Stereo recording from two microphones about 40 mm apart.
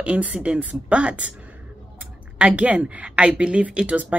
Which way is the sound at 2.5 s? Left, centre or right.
Right.